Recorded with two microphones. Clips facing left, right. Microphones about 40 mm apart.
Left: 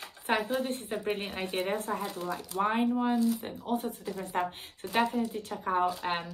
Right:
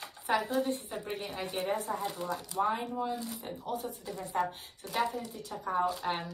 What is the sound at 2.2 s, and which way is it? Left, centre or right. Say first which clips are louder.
Speech: left 1 dB; centre.